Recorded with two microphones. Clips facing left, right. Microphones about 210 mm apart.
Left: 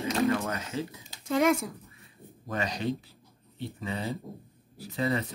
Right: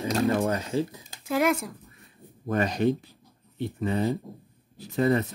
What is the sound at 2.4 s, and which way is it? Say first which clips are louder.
Speech: right 7 dB; 50° right (ahead or behind).